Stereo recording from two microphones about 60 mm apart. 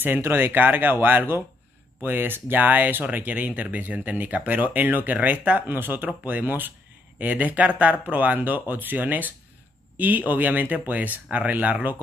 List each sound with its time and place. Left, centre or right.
0.0 s speech: right